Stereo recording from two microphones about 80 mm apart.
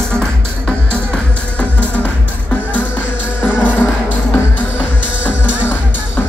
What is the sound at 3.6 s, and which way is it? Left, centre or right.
Music, left.